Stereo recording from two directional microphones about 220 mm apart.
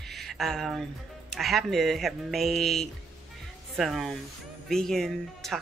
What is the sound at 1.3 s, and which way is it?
Speech, centre (ahead or behind).